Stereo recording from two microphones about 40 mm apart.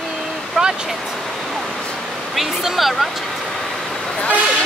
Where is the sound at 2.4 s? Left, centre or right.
Centre.